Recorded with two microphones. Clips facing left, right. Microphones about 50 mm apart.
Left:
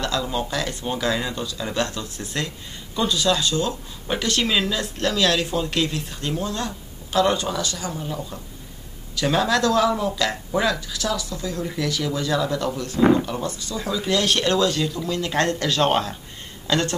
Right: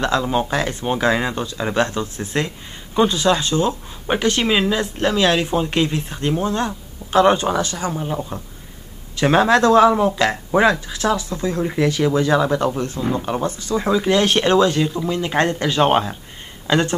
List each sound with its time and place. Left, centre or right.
0.0 s speech: right